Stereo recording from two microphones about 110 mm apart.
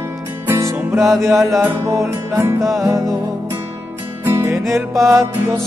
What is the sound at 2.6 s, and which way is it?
Music, centre (ahead or behind).